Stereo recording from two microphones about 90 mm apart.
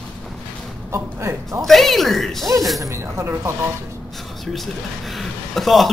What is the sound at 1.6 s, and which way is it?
Speech, centre (ahead or behind).